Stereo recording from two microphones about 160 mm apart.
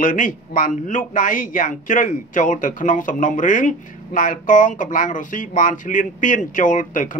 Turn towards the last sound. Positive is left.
turn(degrees=55)  # may be behind; listen again after turning